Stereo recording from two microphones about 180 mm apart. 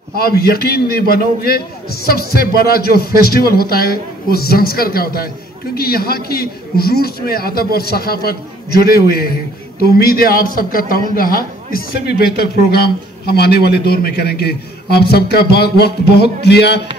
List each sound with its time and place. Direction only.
0.1 s a man's voice: 60° left (ahead or behind)